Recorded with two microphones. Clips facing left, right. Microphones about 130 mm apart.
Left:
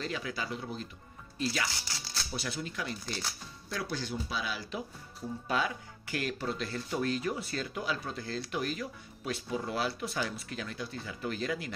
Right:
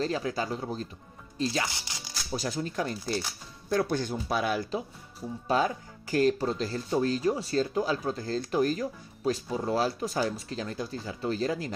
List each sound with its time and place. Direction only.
0.0 s speech: 35° right (ahead or behind)
1.4 s speech: 25° right (ahead or behind)
2.3 s speech: 40° right (ahead or behind)
5.5 s speech: 35° right (ahead or behind)